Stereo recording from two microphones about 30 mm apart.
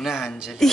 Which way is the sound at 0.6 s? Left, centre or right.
Centre.